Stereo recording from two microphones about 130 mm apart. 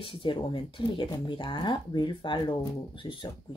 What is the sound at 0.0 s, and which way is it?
Speech, 40° left (ahead or behind).